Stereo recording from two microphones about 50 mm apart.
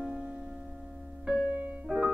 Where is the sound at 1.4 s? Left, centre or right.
Right.